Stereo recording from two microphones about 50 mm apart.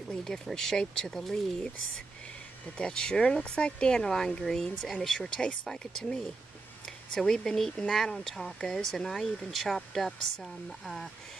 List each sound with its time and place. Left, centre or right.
0.1 s speech: centre
2.8 s speech: centre